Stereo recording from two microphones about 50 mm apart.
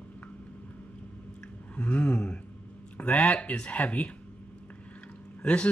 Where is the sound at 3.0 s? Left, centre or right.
Left.